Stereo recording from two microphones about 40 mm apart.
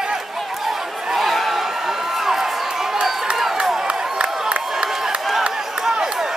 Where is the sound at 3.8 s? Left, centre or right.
Right.